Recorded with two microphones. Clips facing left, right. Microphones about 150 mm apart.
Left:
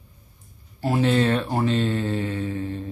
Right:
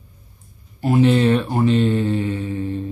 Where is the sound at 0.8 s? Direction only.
15° right (ahead or behind).